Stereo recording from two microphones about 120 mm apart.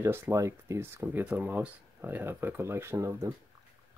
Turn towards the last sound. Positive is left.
turn(degrees=-25)  # may be behind; listen again after turning